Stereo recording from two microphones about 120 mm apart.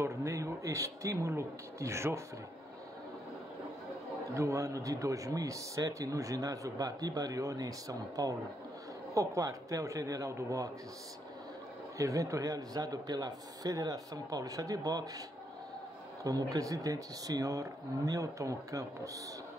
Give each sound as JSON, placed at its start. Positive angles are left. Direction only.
{"t": 0.0, "sound": "speech", "side_deg": -25}
{"t": 4.3, "sound": "speech", "side_deg": -25}
{"t": 12.0, "sound": "speech", "side_deg": -25}
{"t": 16.3, "sound": "speech", "side_deg": -30}